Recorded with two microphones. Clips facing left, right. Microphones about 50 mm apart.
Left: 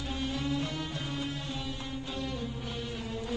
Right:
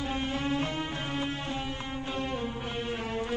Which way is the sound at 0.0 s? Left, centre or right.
Right.